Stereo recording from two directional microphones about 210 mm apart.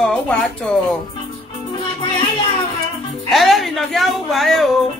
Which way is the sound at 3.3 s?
Centre (ahead or behind).